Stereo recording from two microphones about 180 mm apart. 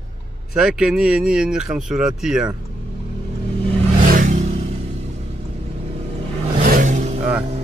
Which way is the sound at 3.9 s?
50° right (ahead or behind).